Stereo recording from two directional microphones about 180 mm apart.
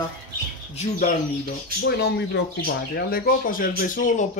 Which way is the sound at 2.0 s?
65° left (ahead or behind).